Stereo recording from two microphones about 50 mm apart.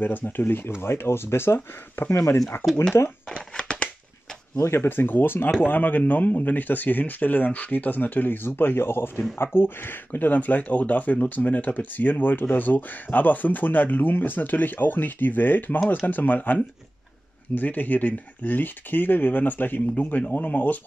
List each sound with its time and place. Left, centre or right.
0.0 s speech: left
2.1 s speech: left
3.3 s a sound: centre
4.7 s speech: left
17.6 s speech: left